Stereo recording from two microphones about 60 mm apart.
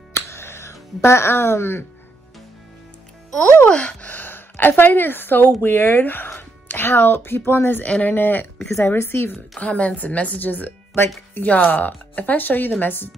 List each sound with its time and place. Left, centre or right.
0.1 s music: left
3.6 s a woman's voice: left
8.7 s a woman's voice: left
9.6 s a woman's voice: left